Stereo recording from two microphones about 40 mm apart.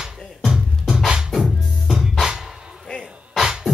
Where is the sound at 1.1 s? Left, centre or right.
Right.